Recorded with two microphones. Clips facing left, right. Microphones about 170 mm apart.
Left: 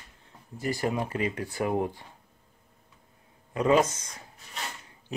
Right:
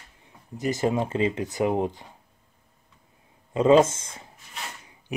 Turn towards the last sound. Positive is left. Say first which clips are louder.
# right 5 dB
turn(degrees=-25)  # may be behind; listen again after turning